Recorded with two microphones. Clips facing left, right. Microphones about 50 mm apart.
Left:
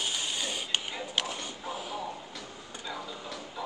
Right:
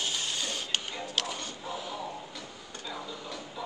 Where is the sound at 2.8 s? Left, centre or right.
Centre.